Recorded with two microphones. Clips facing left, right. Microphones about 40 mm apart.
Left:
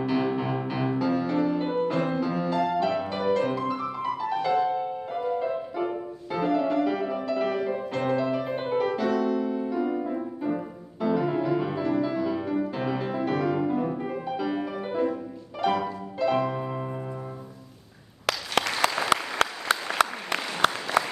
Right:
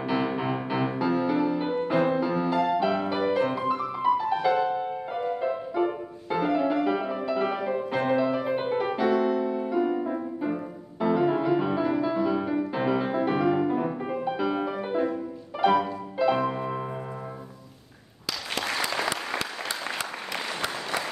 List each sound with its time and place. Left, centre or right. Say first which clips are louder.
0.0 s music: left 1 dB; centre
18.2 s applause: left 5 dB; left